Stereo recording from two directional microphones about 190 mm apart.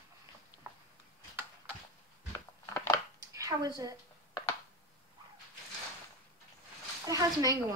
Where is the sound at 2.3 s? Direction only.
15° left (ahead or behind).